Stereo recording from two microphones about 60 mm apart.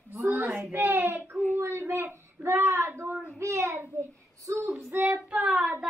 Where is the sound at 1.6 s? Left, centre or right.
Right.